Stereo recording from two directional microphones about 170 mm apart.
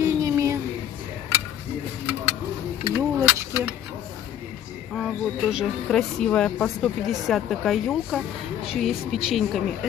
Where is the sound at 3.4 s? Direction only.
15° right (ahead or behind).